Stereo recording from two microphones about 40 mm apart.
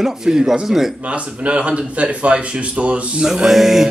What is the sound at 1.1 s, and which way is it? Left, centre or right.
Speech, right.